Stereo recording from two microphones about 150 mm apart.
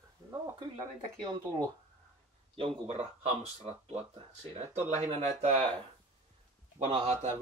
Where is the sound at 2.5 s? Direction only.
40° right (ahead or behind).